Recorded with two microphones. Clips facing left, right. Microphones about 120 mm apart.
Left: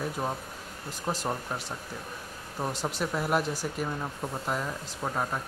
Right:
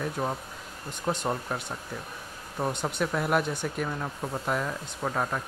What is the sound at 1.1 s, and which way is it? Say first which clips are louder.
Speech: right 3 dB; 5° left (ahead or behind).